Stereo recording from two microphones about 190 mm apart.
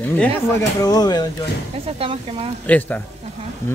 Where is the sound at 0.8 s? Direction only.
20° left (ahead or behind).